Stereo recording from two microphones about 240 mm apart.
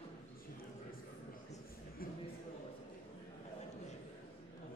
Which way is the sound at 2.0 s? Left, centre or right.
Left.